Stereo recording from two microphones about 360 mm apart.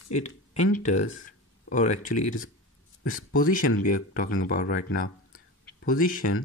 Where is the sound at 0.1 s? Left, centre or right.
Centre.